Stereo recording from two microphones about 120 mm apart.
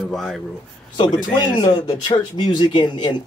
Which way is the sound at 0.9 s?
40° left (ahead or behind).